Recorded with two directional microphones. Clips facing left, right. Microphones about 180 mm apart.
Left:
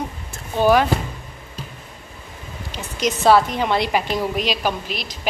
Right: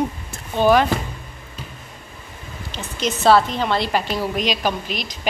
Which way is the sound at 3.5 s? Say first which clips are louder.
Left 1 dB; 15° left (ahead or behind).